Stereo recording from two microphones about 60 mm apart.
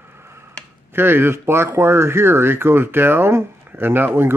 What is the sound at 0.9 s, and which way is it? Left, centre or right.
Speech, right.